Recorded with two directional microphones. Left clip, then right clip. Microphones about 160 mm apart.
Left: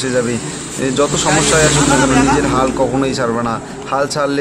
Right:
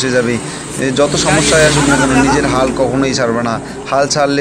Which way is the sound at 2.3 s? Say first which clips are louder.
Right 1 dB; 5° right (ahead or behind).